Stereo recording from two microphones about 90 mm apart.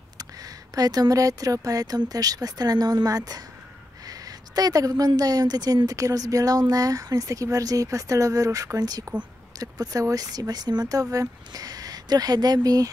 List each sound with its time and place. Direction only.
0.2 s a woman's voice: 45° right (ahead or behind)